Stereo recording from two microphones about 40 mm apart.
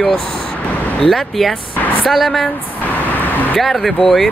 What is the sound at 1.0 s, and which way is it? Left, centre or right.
Speech, centre.